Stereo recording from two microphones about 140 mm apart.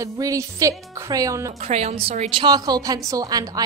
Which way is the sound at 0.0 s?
25° right (ahead or behind).